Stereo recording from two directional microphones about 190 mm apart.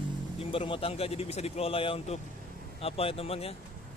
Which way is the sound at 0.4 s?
30° left (ahead or behind).